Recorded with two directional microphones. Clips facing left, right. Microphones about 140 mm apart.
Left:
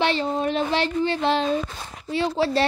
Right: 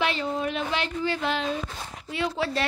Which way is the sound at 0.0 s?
30° left (ahead or behind).